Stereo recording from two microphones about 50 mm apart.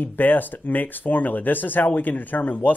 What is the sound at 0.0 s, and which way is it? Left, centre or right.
Speech, left.